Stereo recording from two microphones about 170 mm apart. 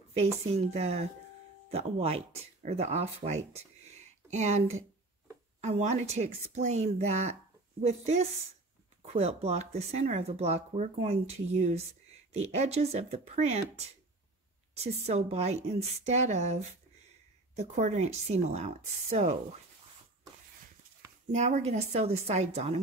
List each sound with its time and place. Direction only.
0.2 s speech: 40° right (ahead or behind)
21.3 s speech: 40° right (ahead or behind)